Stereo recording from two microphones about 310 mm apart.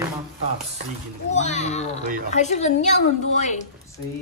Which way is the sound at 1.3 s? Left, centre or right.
Left.